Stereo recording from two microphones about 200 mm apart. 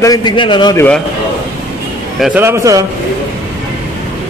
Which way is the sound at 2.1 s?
5° right (ahead or behind).